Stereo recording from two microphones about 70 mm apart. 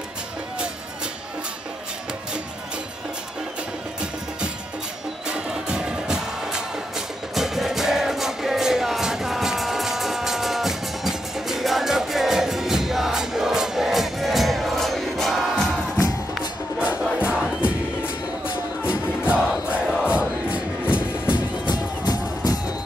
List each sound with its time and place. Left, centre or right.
5.3 s music: centre
16.8 s music: centre
18.9 s music: centre
21.6 s music: left